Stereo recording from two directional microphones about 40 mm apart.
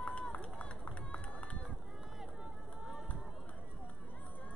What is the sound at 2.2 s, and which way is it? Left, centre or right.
Run, centre.